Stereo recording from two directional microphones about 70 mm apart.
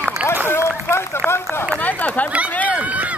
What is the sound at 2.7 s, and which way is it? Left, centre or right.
Run, right.